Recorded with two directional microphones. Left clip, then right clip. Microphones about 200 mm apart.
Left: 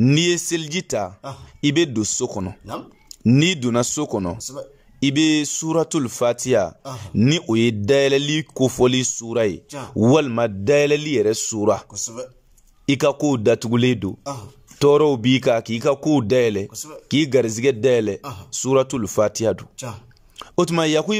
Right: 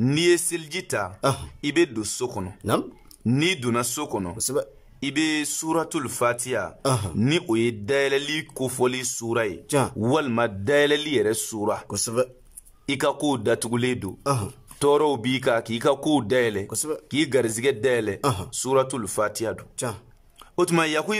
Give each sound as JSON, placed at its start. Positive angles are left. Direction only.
{"t": 0.0, "sound": "speech", "side_deg": 15}
{"t": 11.9, "sound": "speech", "side_deg": -45}
{"t": 12.8, "sound": "speech", "side_deg": 10}
{"t": 14.2, "sound": "speech", "side_deg": -45}
{"t": 14.8, "sound": "speech", "side_deg": 10}
{"t": 16.7, "sound": "speech", "side_deg": -50}
{"t": 17.1, "sound": "speech", "side_deg": 10}
{"t": 18.2, "sound": "speech", "side_deg": -50}
{"t": 18.5, "sound": "speech", "side_deg": 10}